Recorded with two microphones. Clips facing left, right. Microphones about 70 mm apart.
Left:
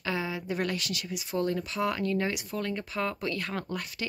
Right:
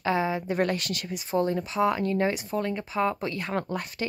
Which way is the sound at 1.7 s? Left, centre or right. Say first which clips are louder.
Right 7 dB; right.